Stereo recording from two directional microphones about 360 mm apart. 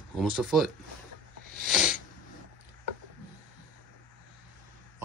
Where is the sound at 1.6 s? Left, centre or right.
Centre.